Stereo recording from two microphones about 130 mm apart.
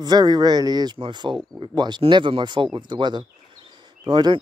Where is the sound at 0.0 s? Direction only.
30° right (ahead or behind).